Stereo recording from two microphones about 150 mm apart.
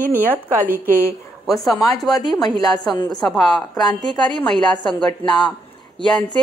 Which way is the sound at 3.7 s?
30° left (ahead or behind).